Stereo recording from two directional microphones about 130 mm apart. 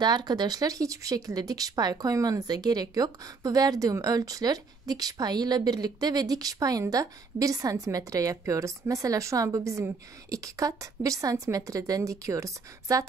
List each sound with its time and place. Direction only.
0.0 s speech: 35° right (ahead or behind)